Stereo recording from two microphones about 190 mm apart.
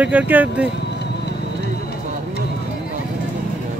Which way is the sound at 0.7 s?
60° left (ahead or behind).